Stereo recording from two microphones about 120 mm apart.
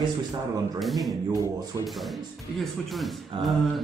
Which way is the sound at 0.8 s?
Centre (ahead or behind).